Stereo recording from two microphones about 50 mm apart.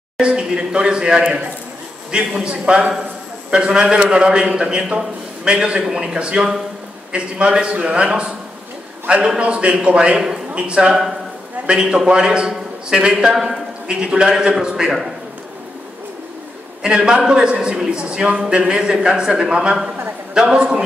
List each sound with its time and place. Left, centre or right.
0.2 s a man's voice: centre
16.8 s a man's voice: centre